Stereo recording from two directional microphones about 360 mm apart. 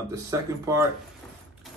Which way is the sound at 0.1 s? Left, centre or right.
Centre.